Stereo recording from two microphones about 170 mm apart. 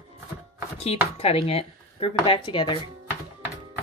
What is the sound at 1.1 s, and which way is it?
Speech, 35° left (ahead or behind).